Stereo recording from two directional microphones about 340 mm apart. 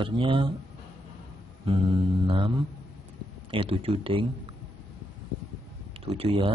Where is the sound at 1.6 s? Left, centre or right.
Centre.